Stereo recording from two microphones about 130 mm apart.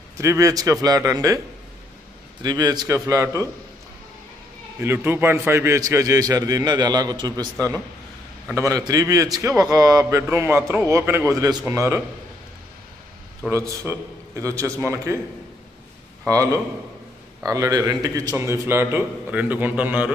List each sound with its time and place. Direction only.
0.2 s a man's voice: 25° right (ahead or behind)
2.4 s a man's voice: 30° right (ahead or behind)
4.7 s a man's voice: 15° right (ahead or behind)
8.5 s a man's voice: 25° right (ahead or behind)
13.5 s a man's voice: 20° right (ahead or behind)
16.3 s a man's voice: 25° right (ahead or behind)